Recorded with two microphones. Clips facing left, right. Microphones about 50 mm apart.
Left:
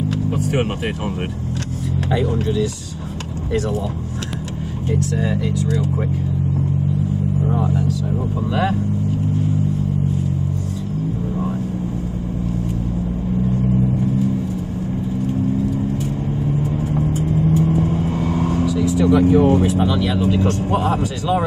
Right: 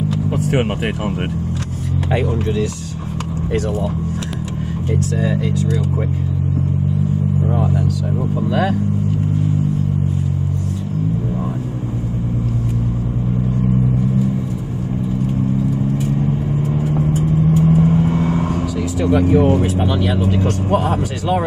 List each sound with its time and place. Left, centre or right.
0.3 s speech: right
4.9 s speech: right
7.5 s vehicle: right
16.2 s vehicle: right
18.2 s speech: right